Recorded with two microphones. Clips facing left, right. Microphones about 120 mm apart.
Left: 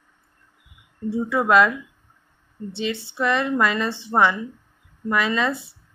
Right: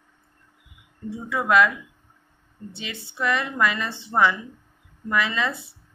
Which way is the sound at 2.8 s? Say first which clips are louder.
Left 6 dB; 25° left (ahead or behind).